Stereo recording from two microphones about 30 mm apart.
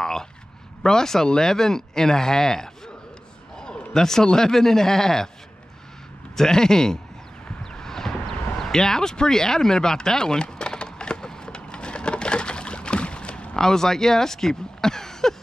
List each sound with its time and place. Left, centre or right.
0.0 s a sound: centre
0.8 s speech: centre
3.5 s a sound: left
3.9 s speech: centre
6.3 s speech: centre
7.8 s clip-clop: centre
8.7 s speech: centre
9.1 s a sound: left
13.6 s speech: centre